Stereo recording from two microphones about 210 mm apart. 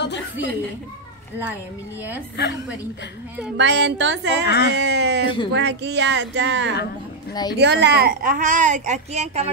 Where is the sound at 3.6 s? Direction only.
55° right (ahead or behind).